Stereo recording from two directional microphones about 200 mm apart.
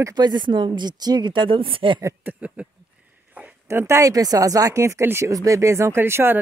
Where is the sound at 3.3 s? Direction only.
10° right (ahead or behind).